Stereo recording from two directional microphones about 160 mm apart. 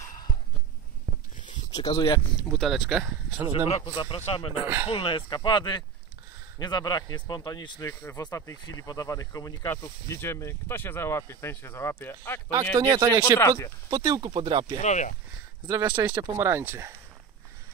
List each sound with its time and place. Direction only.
1.7 s speech: 25° left (ahead or behind)
2.5 s speech: centre (ahead or behind)
3.1 s speech: 20° right (ahead or behind)
3.6 s speech: 35° left (ahead or behind)
4.6 s speech: 15° right (ahead or behind)
4.9 s speech: 30° left (ahead or behind); by 12.4 s 15° left (ahead or behind)
12.7 s speech: 30° right (ahead or behind)
13.4 s speech: 15° left (ahead or behind)
13.8 s speech: 20° right (ahead or behind)
14.8 s speech: 50° left (ahead or behind)
15.6 s speech: 20° right (ahead or behind)